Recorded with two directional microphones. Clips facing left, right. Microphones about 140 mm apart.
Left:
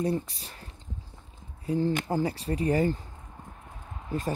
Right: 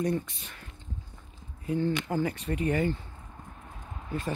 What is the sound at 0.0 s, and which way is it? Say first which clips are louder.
Speech: left 1 dB; 30° left (ahead or behind).